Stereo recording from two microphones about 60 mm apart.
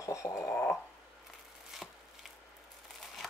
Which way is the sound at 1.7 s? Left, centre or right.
Centre.